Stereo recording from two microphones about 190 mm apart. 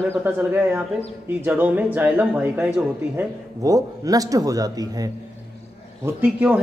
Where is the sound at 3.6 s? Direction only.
20° right (ahead or behind).